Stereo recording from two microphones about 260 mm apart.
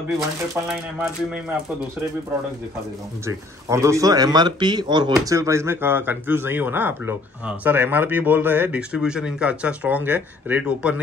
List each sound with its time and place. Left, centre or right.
0.7 s speech: centre
3.3 s speech: centre